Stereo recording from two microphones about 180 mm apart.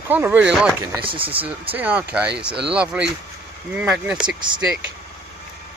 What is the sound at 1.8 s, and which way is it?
Speech, 10° right (ahead or behind).